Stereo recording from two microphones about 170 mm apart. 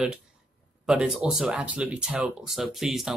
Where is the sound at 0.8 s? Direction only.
5° right (ahead or behind).